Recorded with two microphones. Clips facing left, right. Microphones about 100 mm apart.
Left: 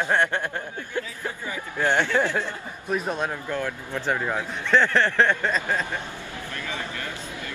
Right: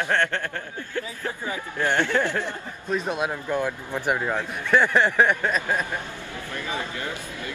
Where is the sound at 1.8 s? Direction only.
15° left (ahead or behind).